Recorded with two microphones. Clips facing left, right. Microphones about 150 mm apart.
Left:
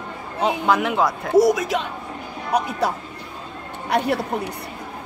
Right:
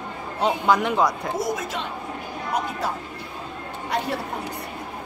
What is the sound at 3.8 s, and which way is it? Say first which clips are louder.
Speech: left 6 dB; 70° left (ahead or behind).